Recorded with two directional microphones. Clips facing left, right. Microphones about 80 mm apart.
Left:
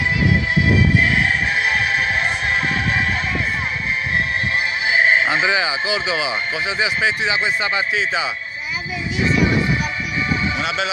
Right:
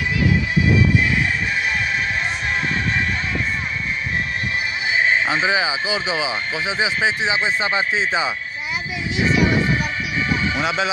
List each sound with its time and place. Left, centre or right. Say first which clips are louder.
5.5 s speech: left 1 dB; centre; by 8.3 s right
9.2 s speech: even; centre